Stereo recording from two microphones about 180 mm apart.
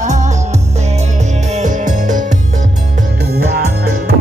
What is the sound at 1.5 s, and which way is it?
Music, 45° right (ahead or behind).